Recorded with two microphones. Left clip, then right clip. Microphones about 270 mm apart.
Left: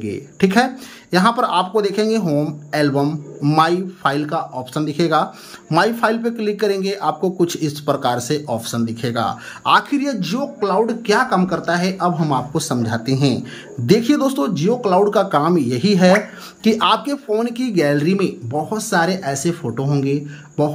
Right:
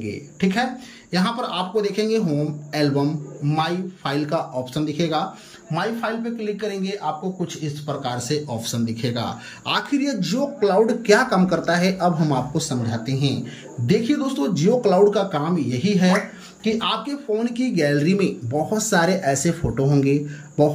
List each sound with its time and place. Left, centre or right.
0.0 s speech: centre